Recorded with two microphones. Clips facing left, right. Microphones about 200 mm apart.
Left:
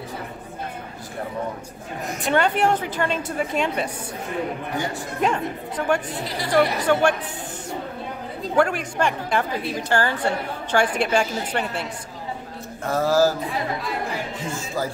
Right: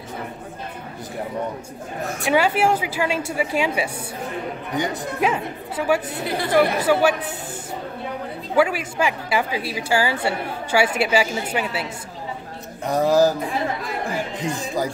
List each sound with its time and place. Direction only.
2.2 s a woman's voice: 5° right (ahead or behind)
5.2 s a woman's voice: 5° right (ahead or behind)
8.5 s a woman's voice: 5° right (ahead or behind)
12.8 s a woman's voice: 15° right (ahead or behind)
14.5 s a woman's voice: 15° right (ahead or behind)